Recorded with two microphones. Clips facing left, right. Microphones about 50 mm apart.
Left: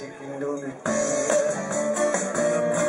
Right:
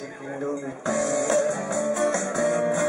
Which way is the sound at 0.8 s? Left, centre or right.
Centre.